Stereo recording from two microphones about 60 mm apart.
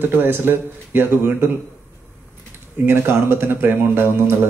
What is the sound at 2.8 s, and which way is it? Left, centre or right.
Speech, right.